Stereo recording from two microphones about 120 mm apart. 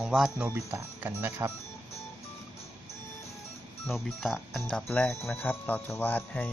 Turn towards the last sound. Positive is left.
turn(degrees=10)  # may be behind; listen again after turning